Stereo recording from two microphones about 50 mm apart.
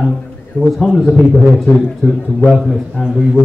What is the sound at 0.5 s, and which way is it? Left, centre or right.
Speech, centre.